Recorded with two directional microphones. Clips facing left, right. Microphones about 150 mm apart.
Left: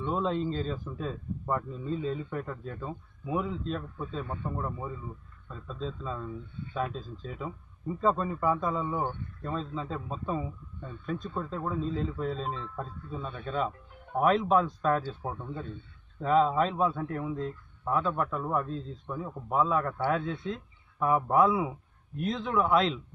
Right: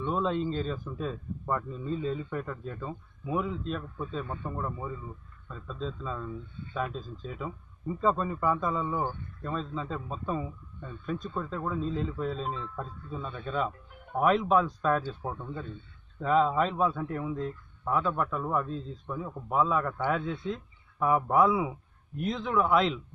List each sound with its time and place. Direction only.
0.1 s a man's voice: centre (ahead or behind)
15.0 s a man's voice: 10° left (ahead or behind)